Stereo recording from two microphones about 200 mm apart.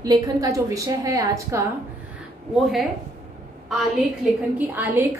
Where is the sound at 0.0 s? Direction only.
15° right (ahead or behind).